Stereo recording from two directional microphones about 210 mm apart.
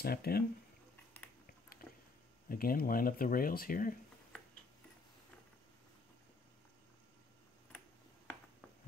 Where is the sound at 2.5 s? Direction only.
45° left (ahead or behind).